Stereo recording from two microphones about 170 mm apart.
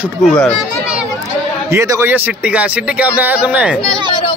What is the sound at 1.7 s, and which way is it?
A man's voice, 15° right (ahead or behind).